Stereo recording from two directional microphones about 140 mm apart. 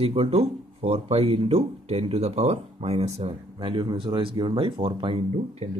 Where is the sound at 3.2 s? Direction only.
40° right (ahead or behind).